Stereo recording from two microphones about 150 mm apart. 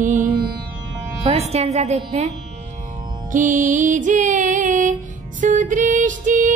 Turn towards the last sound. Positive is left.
turn(degrees=-60)  # may be behind; listen again after turning